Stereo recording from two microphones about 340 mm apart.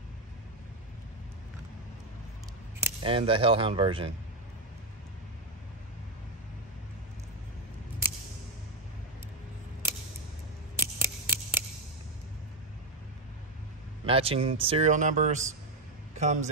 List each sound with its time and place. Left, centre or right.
2.8 s speech: centre
10.8 s scissors: centre
14.0 s speech: centre